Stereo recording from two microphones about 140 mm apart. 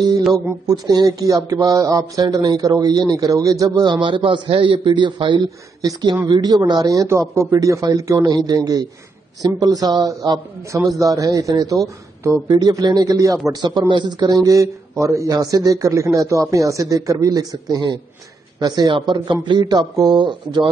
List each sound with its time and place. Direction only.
0.3 s a man's voice: 30° right (ahead or behind)